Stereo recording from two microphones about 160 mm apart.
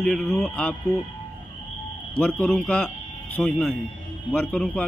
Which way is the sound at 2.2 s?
5° left (ahead or behind).